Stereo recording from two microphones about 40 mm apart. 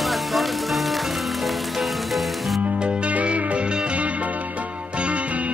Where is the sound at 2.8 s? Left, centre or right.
Right.